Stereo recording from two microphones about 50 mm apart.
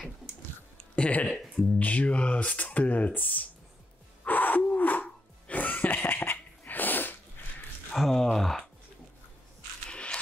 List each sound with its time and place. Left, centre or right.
0.9 s speech: left
4.2 s gasp: left
5.0 s music: left
6.1 s a sound: left
7.9 s a sound: centre
9.8 s scrape: left